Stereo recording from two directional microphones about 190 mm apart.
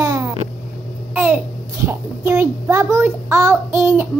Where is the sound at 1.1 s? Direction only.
10° right (ahead or behind).